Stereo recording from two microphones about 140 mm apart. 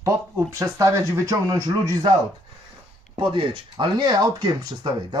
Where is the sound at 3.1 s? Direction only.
35° right (ahead or behind).